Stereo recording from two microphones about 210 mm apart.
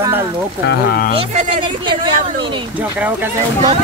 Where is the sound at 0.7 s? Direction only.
45° left (ahead or behind).